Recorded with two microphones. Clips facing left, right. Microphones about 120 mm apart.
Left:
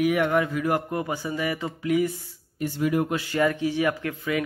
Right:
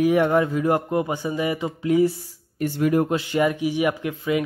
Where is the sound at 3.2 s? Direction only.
20° right (ahead or behind).